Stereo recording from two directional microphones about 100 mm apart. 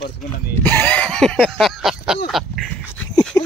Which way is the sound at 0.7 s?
15° left (ahead or behind).